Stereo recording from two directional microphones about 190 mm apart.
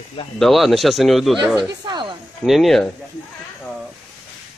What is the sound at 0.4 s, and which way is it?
Speech, centre (ahead or behind).